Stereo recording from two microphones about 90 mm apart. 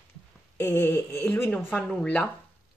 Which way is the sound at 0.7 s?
30° left (ahead or behind).